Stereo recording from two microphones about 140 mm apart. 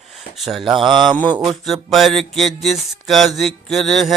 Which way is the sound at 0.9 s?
30° right (ahead or behind).